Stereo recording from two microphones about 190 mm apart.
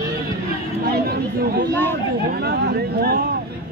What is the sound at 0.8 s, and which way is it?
Chatter, 55° right (ahead or behind).